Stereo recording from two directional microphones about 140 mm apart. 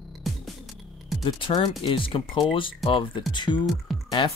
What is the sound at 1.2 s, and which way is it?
Speech, 40° left (ahead or behind).